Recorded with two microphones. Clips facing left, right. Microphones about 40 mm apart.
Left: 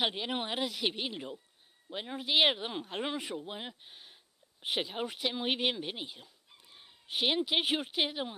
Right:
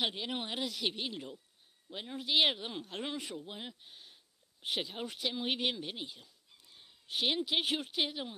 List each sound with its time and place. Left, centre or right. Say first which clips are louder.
0.0 s speech: left 3 dB; centre